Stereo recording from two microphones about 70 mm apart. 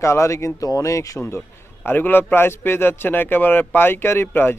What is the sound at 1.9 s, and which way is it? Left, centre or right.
A man's voice, left.